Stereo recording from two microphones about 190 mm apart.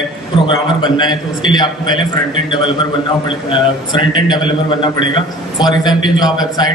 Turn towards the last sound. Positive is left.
turn(degrees=20)  # may be behind; listen again after turning